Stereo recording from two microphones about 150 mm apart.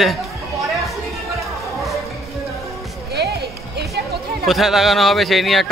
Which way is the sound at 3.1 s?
90° right.